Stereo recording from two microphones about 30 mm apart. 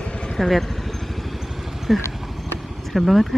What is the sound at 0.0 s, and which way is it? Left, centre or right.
Vehicle, left.